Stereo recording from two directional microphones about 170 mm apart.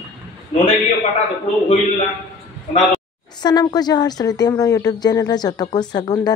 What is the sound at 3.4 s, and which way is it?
Speech, 25° left (ahead or behind).